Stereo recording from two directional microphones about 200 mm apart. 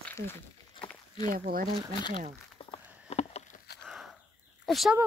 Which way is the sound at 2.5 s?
25° left (ahead or behind).